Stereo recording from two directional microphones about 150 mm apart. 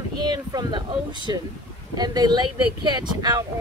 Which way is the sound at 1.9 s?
25° right (ahead or behind).